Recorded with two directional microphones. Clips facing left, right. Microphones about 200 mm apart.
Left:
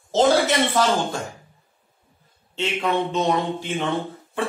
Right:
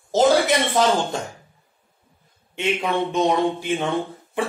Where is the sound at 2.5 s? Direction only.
15° right (ahead or behind).